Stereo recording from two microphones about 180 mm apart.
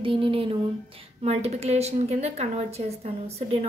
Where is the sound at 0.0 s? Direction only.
30° right (ahead or behind).